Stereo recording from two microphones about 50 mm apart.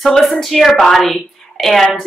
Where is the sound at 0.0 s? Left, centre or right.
Centre.